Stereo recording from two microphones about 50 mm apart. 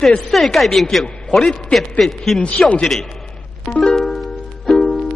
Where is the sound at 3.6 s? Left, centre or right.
Centre.